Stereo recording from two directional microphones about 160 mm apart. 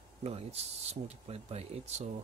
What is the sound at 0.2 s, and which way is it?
Speech, 40° right (ahead or behind).